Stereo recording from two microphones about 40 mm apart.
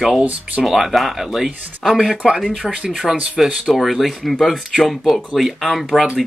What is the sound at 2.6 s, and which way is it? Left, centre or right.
Speech, right.